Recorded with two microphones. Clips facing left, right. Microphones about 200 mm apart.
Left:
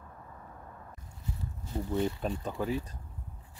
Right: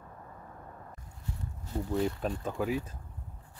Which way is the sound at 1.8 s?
Centre (ahead or behind).